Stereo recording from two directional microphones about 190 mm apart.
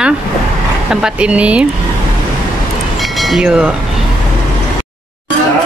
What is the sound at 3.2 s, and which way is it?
Speech, 5° right (ahead or behind).